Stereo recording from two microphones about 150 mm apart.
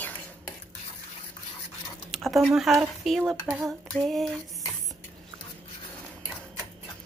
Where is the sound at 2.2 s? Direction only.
Centre (ahead or behind).